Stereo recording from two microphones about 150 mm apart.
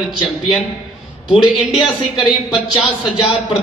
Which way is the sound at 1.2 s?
Centre (ahead or behind).